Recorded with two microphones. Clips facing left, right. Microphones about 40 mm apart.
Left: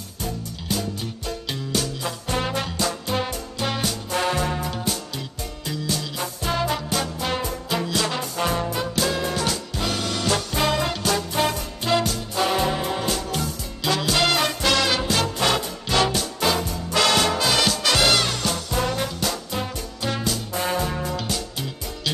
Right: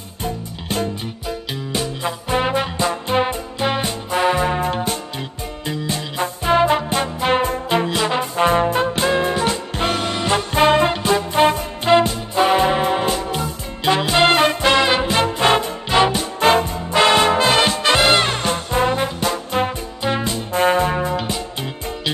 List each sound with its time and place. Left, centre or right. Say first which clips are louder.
0.2 s music: right 5 dB; right
1.7 s music: right 4 dB; right
4.6 s music: right 6 dB; right